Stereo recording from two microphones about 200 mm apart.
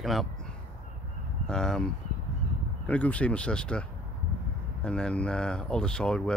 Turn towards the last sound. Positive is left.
turn(degrees=5)  # may be behind; listen again after turning